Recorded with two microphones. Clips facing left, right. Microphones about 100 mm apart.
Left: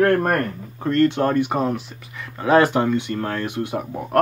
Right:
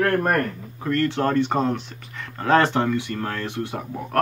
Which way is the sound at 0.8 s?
20° left (ahead or behind).